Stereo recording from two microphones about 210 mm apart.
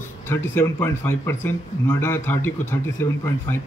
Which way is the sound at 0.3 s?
10° left (ahead or behind).